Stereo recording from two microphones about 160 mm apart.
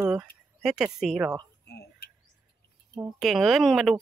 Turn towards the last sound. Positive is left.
turn(degrees=0)  # may be behind; listen again after turning